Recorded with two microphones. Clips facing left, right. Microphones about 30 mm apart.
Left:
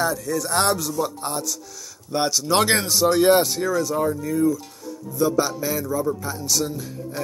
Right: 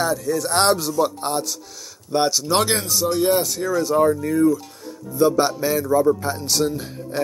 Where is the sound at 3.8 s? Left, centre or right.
Centre.